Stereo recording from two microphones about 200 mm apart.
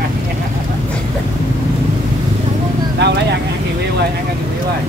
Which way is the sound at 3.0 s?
55° right (ahead or behind).